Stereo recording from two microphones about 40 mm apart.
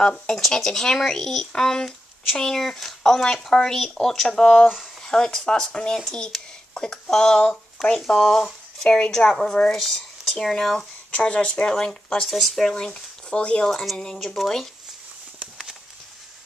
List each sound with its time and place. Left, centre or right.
0.0 s speech: centre
11.1 s speech: left
12.3 s speech: centre
12.9 s speech: left
13.7 s speech: centre